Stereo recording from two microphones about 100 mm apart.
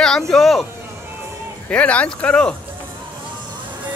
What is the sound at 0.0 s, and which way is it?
Speech, 5° left (ahead or behind).